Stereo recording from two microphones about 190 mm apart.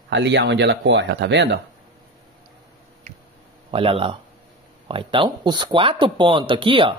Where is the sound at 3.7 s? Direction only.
30° right (ahead or behind).